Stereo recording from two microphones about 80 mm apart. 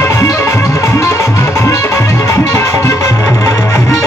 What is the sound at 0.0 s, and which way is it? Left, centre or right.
Music, left.